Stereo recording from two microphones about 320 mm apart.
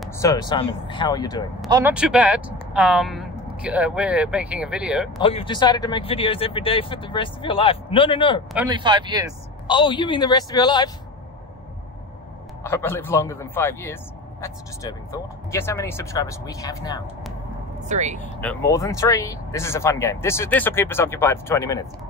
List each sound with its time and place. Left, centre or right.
0.0 s speech: centre
1.7 s speech: centre
5.2 s speech: centre
8.5 s speech: centre
9.7 s speech: centre
12.6 s speech: centre
17.8 s speech: right
18.4 s speech: centre